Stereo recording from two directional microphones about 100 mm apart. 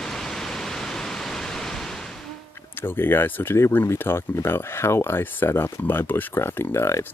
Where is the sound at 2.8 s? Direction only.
20° left (ahead or behind).